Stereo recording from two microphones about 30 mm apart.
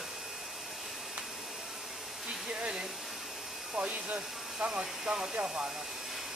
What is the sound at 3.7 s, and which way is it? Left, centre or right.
Speech, right.